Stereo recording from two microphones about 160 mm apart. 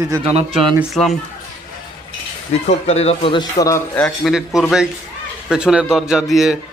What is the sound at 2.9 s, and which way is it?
A man's voice, 40° left (ahead or behind).